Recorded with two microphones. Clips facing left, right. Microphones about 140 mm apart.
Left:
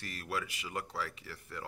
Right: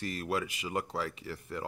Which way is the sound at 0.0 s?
20° right (ahead or behind).